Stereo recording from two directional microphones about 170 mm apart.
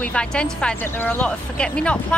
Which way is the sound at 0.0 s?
5° left (ahead or behind).